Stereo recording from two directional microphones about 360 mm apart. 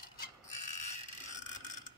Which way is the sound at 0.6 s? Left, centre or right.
Centre.